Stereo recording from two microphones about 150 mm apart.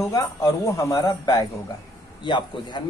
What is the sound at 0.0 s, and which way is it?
A man's voice, 20° left (ahead or behind).